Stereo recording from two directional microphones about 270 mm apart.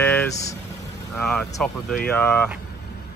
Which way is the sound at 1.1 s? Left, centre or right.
Centre.